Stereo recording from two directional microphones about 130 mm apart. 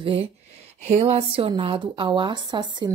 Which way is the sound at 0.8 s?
60° right (ahead or behind).